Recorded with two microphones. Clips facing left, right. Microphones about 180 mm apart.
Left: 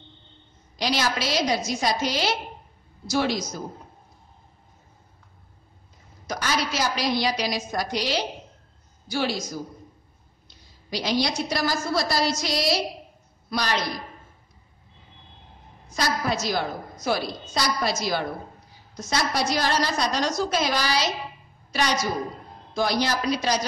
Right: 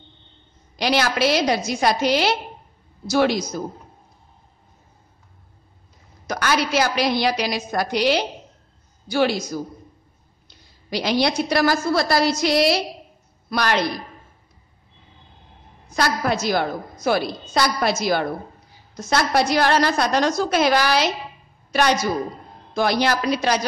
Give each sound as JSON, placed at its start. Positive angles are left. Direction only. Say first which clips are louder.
{"t": 0.7, "sound": "a woman's voice", "louder": "right 5 dB", "side_deg": -60}
{"t": 6.2, "sound": "a woman's voice", "louder": "right 5 dB", "side_deg": -60}
{"t": 10.9, "sound": "a woman's voice", "louder": "right 4 dB", "side_deg": -60}
{"t": 15.9, "sound": "a woman's voice", "louder": "right 4 dB", "side_deg": -60}
{"t": 22.8, "sound": "a woman's voice", "louder": "right 4 dB", "side_deg": -60}